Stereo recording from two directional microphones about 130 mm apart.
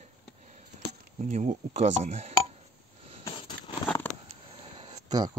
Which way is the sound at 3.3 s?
40° left (ahead or behind).